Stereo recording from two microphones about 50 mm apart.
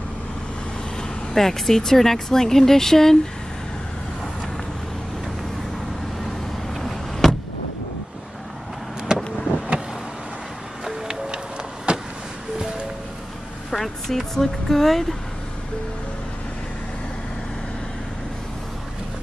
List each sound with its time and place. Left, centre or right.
1.3 s speech: centre
6.8 s vehicle: centre
9.1 s vehicle: centre
10.8 s music: centre
11.3 s vehicle: right
13.7 s speech: centre